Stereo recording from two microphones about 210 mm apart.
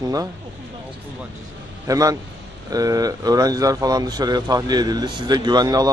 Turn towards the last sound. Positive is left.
turn(degrees=-20)  # may be behind; listen again after turning